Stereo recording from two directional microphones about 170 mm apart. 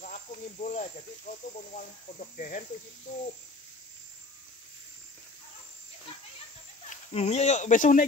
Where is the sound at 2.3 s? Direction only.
50° left (ahead or behind).